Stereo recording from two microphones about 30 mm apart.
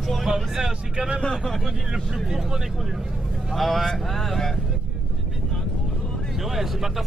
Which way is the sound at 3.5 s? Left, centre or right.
Centre.